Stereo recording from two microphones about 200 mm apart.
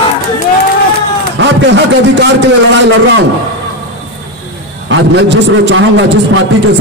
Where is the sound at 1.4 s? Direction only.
65° right (ahead or behind).